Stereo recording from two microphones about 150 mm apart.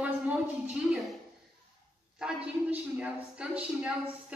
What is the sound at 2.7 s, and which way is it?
A woman's voice, 10° right (ahead or behind).